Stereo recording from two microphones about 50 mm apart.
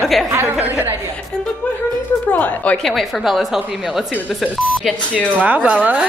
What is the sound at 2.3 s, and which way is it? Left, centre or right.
Speech, left.